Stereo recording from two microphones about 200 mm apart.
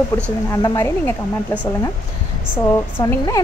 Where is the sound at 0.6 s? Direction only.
15° left (ahead or behind).